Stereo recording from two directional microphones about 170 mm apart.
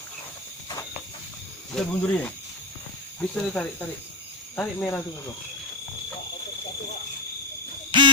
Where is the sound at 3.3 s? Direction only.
5° left (ahead or behind).